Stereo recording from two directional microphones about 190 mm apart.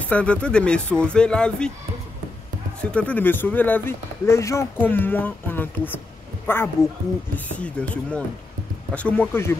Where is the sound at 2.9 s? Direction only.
5° left (ahead or behind).